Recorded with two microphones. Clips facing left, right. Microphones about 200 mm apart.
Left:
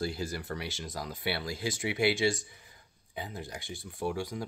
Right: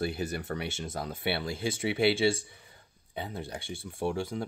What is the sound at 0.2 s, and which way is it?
Speech, 25° right (ahead or behind).